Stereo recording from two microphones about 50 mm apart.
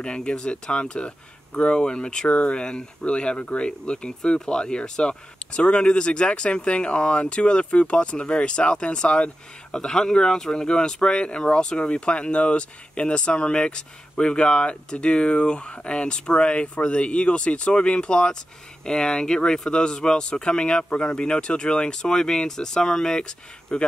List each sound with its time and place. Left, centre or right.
0.0 s speech: centre